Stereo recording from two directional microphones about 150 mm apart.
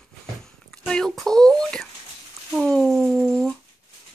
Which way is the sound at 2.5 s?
Centre (ahead or behind).